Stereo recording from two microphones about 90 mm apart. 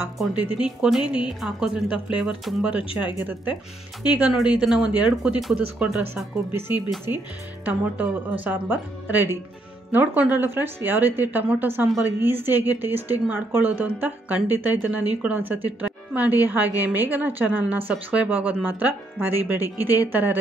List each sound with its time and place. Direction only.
0.4 s a woman's voice: 20° right (ahead or behind)
0.7 s a woman's voice: 5° right (ahead or behind); by 3.5 s 20° right (ahead or behind)
4.3 s speech: 5° right (ahead or behind)
7.1 s speech: 65° left (ahead or behind)
7.6 s a woman's voice: 20° right (ahead or behind)